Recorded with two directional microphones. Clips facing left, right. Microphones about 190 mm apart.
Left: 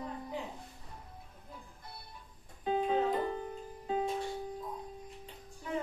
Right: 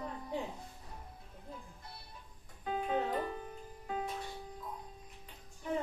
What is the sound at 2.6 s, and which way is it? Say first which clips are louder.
Music: left 4 dB; 25° left (ahead or behind).